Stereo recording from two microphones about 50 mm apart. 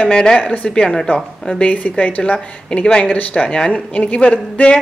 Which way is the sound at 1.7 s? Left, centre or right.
Left.